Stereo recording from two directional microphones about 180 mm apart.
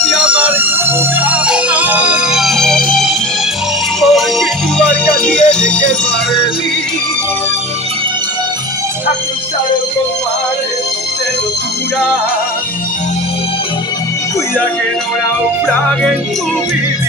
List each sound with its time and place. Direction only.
0.1 s music: 10° right (ahead or behind)
4.0 s music: centre (ahead or behind)